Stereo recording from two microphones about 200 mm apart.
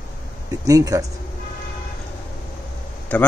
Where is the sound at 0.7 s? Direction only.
15° right (ahead or behind).